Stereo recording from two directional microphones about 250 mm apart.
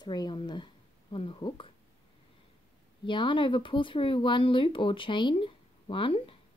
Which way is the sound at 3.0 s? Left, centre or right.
Centre.